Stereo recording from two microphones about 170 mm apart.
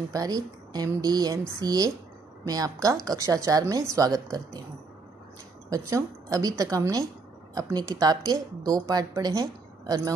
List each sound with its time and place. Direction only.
0.1 s a woman's voice: 20° right (ahead or behind)
5.7 s a woman's voice: 20° right (ahead or behind)